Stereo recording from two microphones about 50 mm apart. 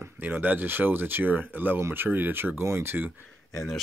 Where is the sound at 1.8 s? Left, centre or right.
Right.